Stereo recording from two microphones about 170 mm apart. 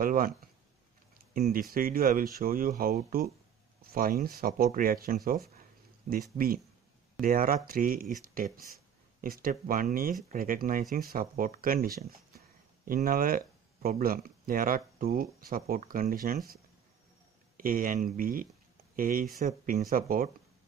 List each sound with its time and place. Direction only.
0.0 s speech: 55° right (ahead or behind)
1.5 s speech: 60° right (ahead or behind)
17.6 s speech: 55° right (ahead or behind)